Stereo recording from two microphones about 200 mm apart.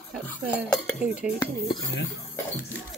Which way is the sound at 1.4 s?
20° left (ahead or behind).